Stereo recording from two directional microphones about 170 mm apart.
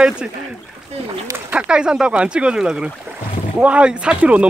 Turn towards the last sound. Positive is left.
turn(degrees=-10)  # may be behind; listen again after turning